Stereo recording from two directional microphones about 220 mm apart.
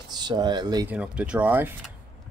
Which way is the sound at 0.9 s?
5° right (ahead or behind).